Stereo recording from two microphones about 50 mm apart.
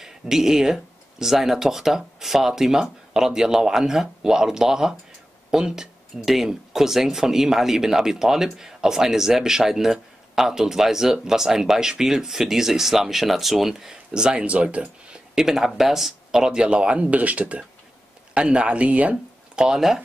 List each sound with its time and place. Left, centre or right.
0.0 s speech: centre
15.3 s speech: centre